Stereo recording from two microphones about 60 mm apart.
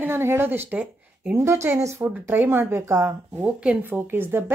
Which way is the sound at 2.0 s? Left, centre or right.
Right.